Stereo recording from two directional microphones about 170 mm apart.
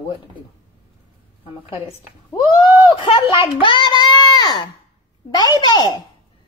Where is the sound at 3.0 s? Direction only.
30° left (ahead or behind).